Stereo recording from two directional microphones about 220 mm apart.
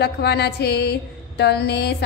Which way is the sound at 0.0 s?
45° left (ahead or behind).